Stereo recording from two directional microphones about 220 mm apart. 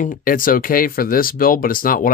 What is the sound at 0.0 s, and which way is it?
Speech, 40° left (ahead or behind).